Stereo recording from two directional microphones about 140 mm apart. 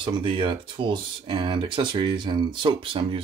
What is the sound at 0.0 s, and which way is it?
Speech, 35° right (ahead or behind).